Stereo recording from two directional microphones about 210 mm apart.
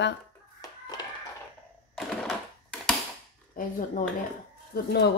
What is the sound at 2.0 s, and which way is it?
Typing, centre (ahead or behind).